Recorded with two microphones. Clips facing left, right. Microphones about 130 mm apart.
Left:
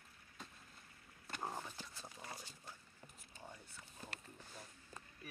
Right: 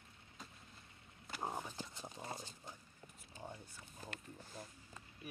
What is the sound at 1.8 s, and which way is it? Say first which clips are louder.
Clip-clop: right 5 dB; 20° right (ahead or behind).